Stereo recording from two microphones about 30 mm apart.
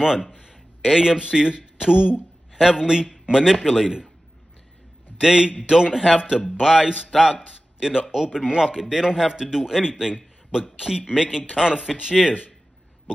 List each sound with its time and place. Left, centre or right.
0.0 s a man's voice: centre
5.2 s a man's voice: right
7.4 s a sound: right
8.1 s a man's voice: right